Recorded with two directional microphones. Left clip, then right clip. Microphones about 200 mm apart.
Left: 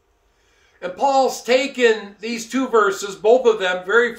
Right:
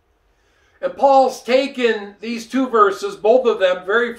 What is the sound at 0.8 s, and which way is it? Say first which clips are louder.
Speech: right 4 dB; 10° left (ahead or behind).